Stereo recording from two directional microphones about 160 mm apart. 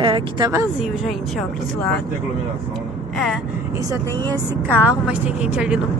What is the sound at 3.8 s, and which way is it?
Speech, 25° right (ahead or behind).